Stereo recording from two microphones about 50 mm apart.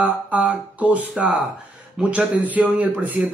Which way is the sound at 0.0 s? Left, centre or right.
Right.